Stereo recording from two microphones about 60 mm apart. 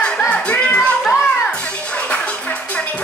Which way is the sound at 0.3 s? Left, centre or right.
Centre.